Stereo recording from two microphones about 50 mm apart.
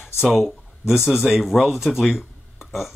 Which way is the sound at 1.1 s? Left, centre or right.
Centre.